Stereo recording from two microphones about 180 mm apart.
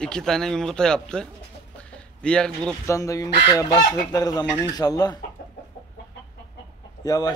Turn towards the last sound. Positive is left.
turn(degrees=20)  # may be behind; listen again after turning